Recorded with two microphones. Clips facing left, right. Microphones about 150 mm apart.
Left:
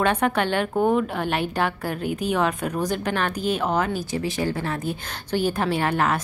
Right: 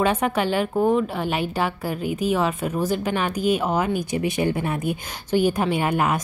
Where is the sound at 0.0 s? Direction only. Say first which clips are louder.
Even; 5° right (ahead or behind).